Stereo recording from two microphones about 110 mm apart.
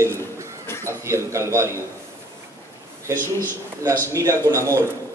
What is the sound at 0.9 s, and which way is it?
Speech, 25° right (ahead or behind).